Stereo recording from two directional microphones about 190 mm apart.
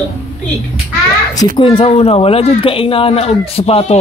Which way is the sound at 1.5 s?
30° left (ahead or behind).